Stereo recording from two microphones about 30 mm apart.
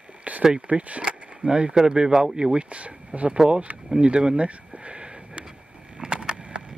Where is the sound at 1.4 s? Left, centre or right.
Right.